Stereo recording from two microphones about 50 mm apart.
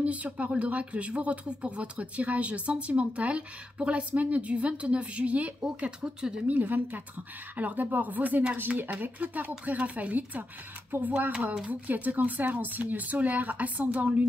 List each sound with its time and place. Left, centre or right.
0.0 s speech: right
6.4 s speech: right